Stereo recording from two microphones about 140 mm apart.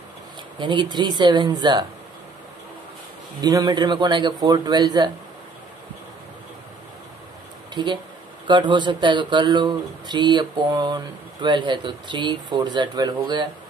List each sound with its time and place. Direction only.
0.6 s speech: 35° right (ahead or behind)
3.3 s speech: 30° right (ahead or behind)
7.7 s speech: 30° right (ahead or behind)